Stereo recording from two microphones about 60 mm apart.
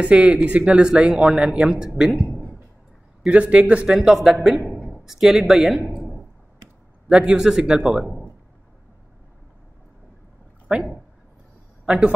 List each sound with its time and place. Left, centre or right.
0.0 s speech: right; by 2.2 s centre
3.3 s speech: right
4.1 s speech: centre
7.1 s speech: centre
11.8 s a man's voice: centre